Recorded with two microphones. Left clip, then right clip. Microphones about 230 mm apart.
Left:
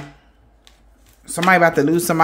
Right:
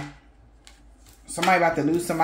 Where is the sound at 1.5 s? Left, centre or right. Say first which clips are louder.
Left 6 dB; left.